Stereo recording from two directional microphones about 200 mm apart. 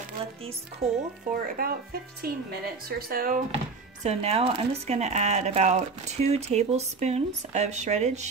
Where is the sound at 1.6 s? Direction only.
50° right (ahead or behind).